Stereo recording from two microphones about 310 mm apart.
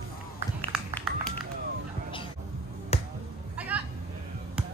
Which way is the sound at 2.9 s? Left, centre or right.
Centre.